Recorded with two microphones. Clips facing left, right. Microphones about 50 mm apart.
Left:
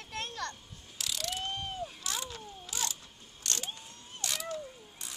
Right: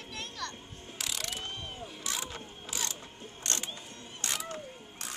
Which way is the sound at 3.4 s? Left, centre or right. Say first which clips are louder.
Right 1 dB; right.